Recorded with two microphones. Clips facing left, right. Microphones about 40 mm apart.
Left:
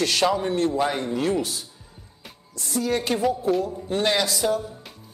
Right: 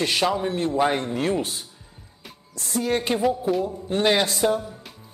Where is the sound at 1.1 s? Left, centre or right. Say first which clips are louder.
Even; right.